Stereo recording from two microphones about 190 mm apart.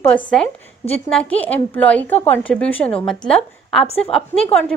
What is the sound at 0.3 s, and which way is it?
A woman's voice, 5° left (ahead or behind).